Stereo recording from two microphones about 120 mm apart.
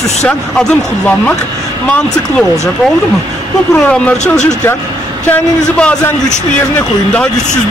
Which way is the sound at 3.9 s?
10° left (ahead or behind).